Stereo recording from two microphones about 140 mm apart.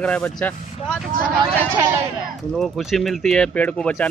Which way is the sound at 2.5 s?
Centre (ahead or behind).